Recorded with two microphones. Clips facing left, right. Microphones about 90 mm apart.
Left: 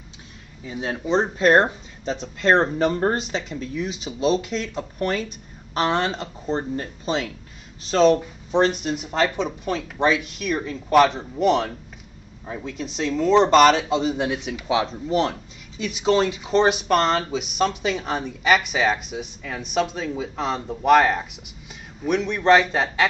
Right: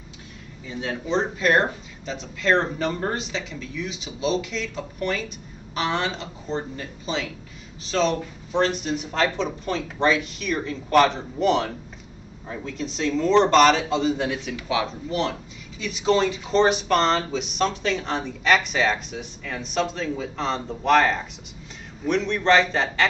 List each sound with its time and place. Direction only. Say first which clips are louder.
0.7 s speech: left 2 dB; 15° left (ahead or behind)
1.1 s speech: left 4 dB; 35° left (ahead or behind)
8.2 s speech: left 3 dB; 20° left (ahead or behind)
8.6 s speech: left 2 dB; 5° left (ahead or behind); by 15.1 s 20° left (ahead or behind)
15.8 s speech: left 1 dB; 5° left (ahead or behind)